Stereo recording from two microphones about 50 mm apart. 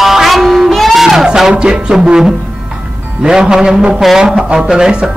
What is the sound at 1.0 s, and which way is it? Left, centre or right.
Music, centre.